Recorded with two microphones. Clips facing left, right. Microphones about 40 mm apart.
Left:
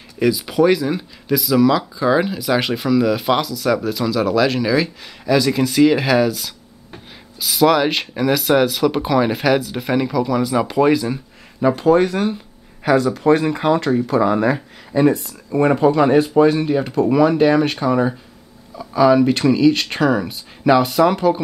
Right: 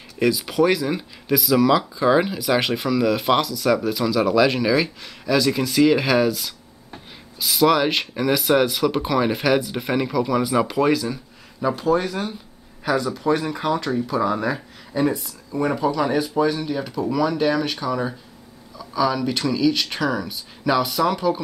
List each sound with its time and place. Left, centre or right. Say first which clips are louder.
0.2 s speech: left 3 dB; centre
10.7 s speech: left 4 dB; centre
11.8 s speech: left 7 dB; left
12.9 s speech: left 6 dB; left
13.5 s speech: left 6 dB; left
15.2 s speech: left 7 dB; left